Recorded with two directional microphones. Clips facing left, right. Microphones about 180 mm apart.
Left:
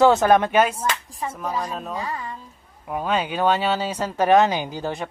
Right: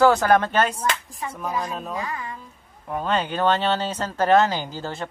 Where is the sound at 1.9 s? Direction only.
30° left (ahead or behind).